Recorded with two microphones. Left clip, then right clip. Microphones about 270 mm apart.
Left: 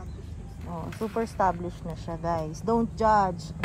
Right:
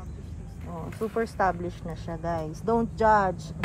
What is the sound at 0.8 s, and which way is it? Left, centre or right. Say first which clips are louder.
Speech: right 1 dB; centre.